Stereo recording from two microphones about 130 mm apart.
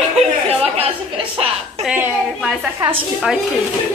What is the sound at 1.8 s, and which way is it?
Speech, 15° right (ahead or behind).